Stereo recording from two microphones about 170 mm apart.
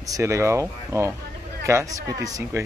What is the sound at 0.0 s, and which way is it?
Speech, 20° right (ahead or behind).